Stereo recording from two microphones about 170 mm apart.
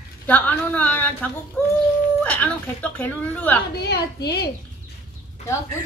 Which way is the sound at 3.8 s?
75° left (ahead or behind).